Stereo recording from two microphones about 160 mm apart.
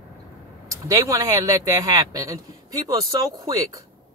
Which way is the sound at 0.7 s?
20° right (ahead or behind).